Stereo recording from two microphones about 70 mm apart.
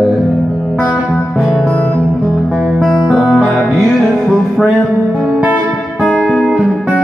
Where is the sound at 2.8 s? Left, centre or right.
Centre.